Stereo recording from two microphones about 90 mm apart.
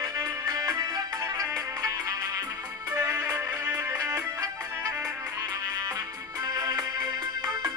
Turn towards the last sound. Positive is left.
turn(degrees=-50)  # may be behind; listen again after turning